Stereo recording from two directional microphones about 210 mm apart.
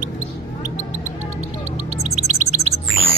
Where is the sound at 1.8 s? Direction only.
30° right (ahead or behind).